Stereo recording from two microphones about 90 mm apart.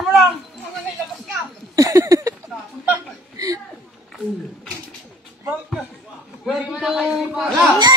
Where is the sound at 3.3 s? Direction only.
40° right (ahead or behind).